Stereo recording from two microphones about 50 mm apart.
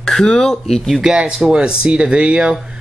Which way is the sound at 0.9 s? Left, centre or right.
Centre.